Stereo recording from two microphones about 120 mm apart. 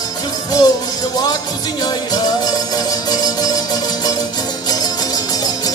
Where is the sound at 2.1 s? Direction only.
35° left (ahead or behind).